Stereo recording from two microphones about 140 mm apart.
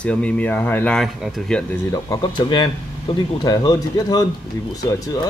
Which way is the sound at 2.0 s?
30° left (ahead or behind).